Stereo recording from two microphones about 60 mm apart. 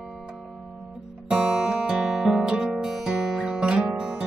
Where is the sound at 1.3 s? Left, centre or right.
Centre.